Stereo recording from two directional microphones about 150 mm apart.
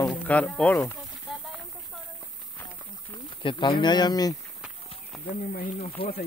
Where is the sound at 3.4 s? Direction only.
30° left (ahead or behind).